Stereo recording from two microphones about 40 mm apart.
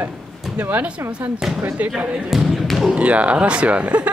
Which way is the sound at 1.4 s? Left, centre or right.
Centre.